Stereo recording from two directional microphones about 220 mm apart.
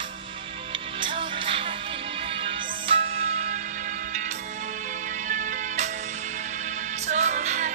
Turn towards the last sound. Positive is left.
turn(degrees=-35)  # may be behind; listen again after turning